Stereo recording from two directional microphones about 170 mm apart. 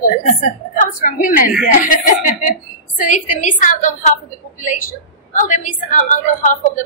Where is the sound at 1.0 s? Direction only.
55° left (ahead or behind).